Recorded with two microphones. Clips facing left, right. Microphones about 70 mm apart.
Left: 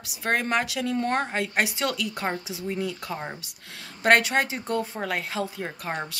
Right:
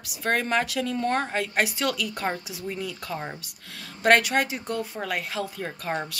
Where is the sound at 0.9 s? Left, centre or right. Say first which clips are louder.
Even; left.